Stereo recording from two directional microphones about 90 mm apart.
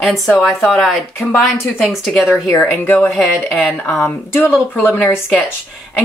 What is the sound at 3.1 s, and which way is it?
Speech, 5° left (ahead or behind).